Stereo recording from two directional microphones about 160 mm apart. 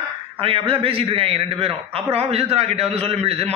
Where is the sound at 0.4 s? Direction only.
35° right (ahead or behind).